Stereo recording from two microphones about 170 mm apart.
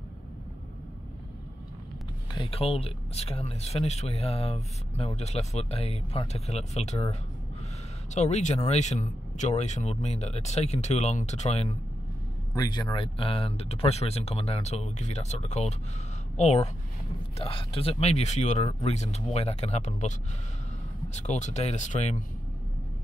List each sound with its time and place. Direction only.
2.3 s speech: 30° left (ahead or behind)
12.5 s speech: 25° left (ahead or behind); by 22.2 s 45° left (ahead or behind)